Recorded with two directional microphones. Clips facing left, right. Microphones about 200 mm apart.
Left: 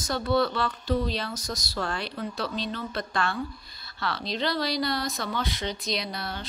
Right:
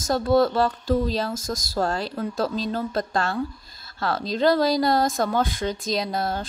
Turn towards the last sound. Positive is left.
turn(degrees=-45)  # may be behind; listen again after turning